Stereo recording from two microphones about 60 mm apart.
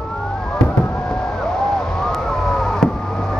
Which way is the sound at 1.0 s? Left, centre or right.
Centre.